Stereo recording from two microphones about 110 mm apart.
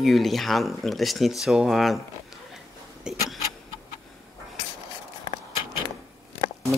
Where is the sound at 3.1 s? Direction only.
5° right (ahead or behind).